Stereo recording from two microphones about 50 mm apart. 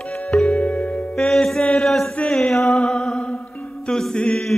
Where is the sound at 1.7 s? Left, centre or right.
Centre.